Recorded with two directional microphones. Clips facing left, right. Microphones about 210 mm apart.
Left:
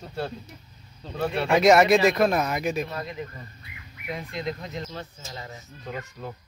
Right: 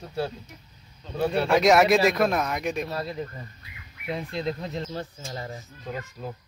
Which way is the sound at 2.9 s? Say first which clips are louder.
Right 2 dB; 35° right (ahead or behind).